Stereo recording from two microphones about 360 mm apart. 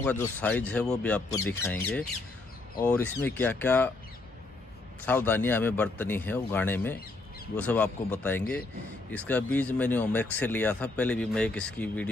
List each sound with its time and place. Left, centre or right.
0.0 s speech: centre
5.0 s speech: centre